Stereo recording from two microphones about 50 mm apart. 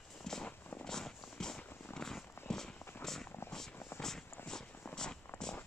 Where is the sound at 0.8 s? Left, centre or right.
Centre.